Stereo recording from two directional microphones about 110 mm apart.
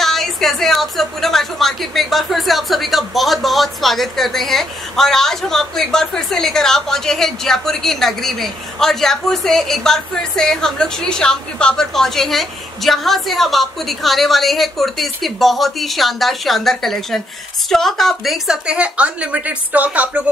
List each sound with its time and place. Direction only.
0.0 s a woman's voice: centre (ahead or behind); by 20.1 s 15° right (ahead or behind)